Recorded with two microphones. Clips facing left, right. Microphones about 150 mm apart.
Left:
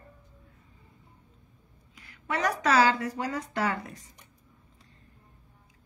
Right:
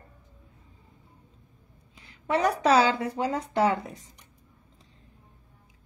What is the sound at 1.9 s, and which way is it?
A woman's voice, 25° right (ahead or behind).